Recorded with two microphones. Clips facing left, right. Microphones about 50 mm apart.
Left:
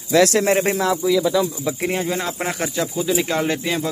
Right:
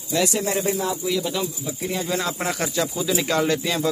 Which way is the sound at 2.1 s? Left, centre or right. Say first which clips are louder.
Left 1 dB; left.